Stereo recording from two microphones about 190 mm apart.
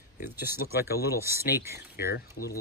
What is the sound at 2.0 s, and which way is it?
Speech, 55° left (ahead or behind).